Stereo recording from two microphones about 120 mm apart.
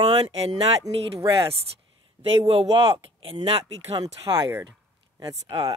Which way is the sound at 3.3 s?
40° right (ahead or behind).